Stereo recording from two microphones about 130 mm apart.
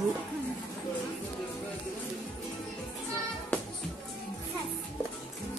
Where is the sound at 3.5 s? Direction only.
10° left (ahead or behind).